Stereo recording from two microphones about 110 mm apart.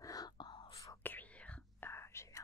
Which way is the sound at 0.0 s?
35° left (ahead or behind).